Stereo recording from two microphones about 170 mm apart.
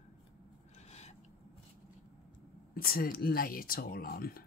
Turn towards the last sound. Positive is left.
turn(degrees=60)  # may be behind; listen again after turning